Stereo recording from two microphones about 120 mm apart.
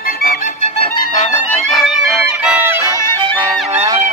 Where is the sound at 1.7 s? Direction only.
5° left (ahead or behind).